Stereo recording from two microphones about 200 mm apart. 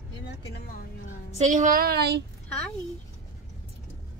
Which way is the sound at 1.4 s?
40° right (ahead or behind).